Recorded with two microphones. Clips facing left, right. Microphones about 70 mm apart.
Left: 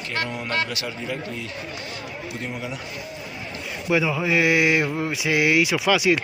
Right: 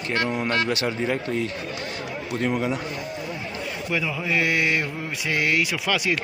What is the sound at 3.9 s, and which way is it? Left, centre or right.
Mantra, centre.